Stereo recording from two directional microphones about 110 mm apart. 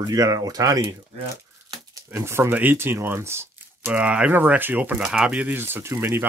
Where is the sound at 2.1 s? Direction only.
25° right (ahead or behind).